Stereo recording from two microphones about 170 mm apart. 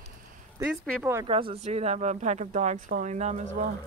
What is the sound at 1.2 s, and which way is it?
Speech, 35° right (ahead or behind).